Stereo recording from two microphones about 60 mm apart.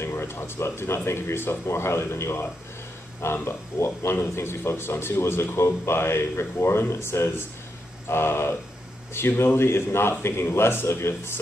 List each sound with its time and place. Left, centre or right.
0.0 s speech: left